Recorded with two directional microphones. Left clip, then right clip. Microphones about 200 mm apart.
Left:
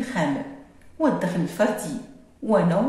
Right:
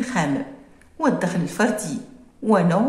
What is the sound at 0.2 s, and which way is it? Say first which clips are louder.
A woman's voice: right 1 dB; 35° right (ahead or behind).